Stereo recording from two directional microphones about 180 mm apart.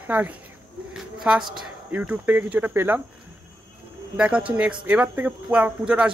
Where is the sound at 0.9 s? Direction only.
5° right (ahead or behind).